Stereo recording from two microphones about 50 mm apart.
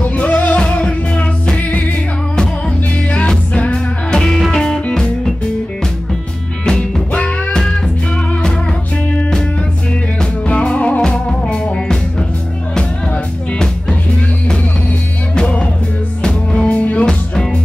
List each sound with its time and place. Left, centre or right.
0.0 s music: left
3.1 s music: left
6.6 s music: centre
10.5 s music: left
15.3 s music: centre